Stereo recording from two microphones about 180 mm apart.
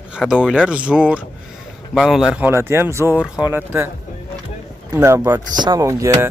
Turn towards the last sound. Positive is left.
turn(degrees=-15)  # may be behind; listen again after turning